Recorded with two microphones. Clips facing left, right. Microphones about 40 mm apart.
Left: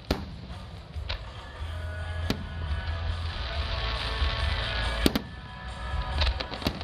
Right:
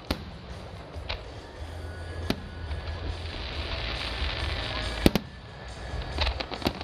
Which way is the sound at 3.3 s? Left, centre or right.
Centre.